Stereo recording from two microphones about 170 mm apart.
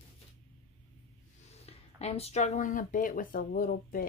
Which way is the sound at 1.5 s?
40° left (ahead or behind).